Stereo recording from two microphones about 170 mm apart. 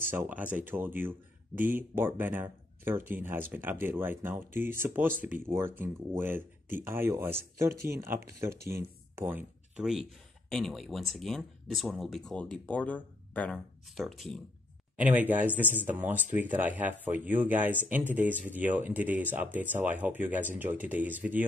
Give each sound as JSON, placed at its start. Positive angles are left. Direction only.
{"t": 0.1, "sound": "speech", "side_deg": -10}
{"t": 15.0, "sound": "speech", "side_deg": -10}